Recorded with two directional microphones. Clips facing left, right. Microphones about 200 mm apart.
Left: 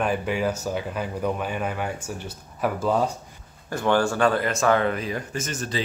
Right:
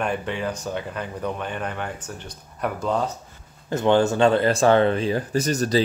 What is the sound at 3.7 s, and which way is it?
Speech, 20° right (ahead or behind).